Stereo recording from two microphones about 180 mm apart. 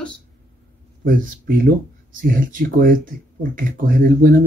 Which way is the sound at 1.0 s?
50° right (ahead or behind).